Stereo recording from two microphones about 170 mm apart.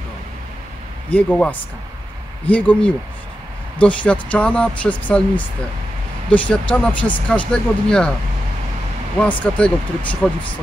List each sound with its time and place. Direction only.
1.1 s speech: 5° left (ahead or behind)
6.3 s speech: 10° left (ahead or behind)
9.2 s speech: 5° left (ahead or behind)